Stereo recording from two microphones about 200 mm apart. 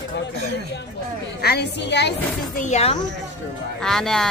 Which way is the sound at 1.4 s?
55° left (ahead or behind).